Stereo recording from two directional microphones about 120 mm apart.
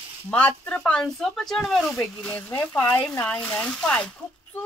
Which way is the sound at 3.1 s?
10° left (ahead or behind).